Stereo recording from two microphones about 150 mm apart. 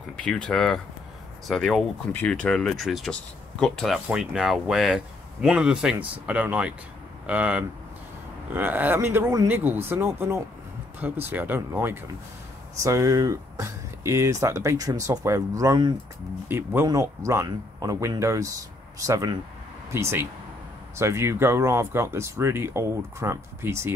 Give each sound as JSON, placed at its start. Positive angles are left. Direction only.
{"t": 0.2, "sound": "speech", "side_deg": 5}